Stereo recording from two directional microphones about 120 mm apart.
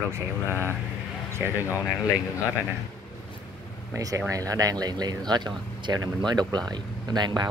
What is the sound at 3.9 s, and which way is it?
Speech, 25° right (ahead or behind).